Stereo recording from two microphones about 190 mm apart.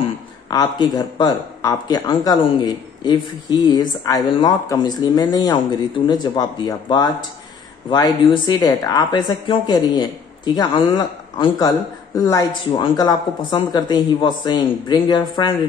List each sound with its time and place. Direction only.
0.5 s speech: 20° left (ahead or behind)